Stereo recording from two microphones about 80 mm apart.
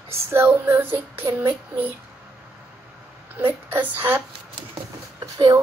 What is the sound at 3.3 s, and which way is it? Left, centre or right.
Speech, right.